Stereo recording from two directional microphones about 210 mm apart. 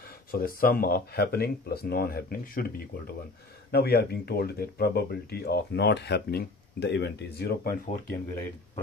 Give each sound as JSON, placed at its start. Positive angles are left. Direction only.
{"t": 0.3, "sound": "speech", "side_deg": 45}